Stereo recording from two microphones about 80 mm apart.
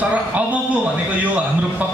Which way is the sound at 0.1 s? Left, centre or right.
Centre.